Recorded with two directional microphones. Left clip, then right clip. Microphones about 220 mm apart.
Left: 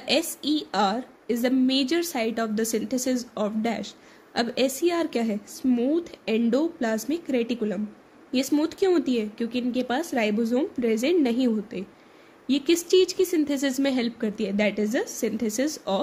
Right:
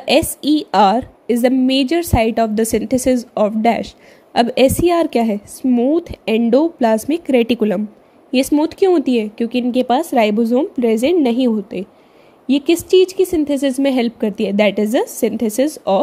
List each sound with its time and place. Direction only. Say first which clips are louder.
0.0 s a woman's voice: right 10 dB; 30° right (ahead or behind)